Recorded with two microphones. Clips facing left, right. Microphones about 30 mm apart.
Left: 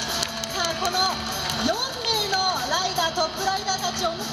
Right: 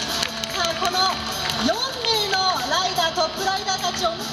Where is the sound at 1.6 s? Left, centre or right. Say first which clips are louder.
Right 3 dB; centre.